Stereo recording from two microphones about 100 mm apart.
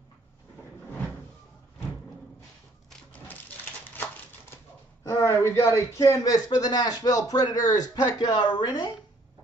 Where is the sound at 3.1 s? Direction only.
15° left (ahead or behind).